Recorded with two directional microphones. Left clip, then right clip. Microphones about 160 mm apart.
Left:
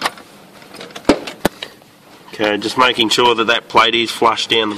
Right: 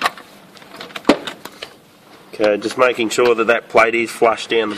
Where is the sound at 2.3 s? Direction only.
70° left (ahead or behind); by 4.3 s 85° left.